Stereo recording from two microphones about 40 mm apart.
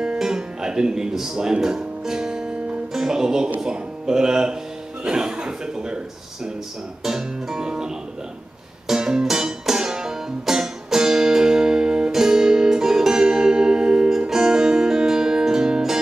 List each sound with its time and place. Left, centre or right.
0.2 s music: centre
3.0 s speech: centre
3.6 s music: centre
5.0 s speech: centre
7.0 s music: centre